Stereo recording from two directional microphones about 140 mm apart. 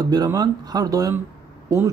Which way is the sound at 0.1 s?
30° right (ahead or behind).